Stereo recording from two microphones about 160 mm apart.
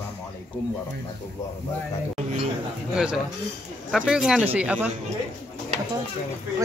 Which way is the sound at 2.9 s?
5° right (ahead or behind).